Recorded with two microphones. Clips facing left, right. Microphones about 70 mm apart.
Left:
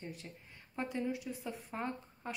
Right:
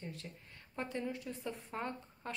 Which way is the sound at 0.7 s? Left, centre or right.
Centre.